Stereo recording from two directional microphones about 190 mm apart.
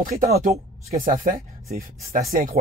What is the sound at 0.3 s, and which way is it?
Speech, 35° right (ahead or behind).